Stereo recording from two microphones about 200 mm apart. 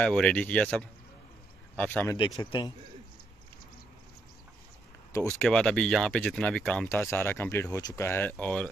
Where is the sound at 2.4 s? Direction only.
20° left (ahead or behind).